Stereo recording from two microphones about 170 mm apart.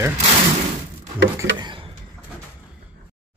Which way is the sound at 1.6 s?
30° right (ahead or behind).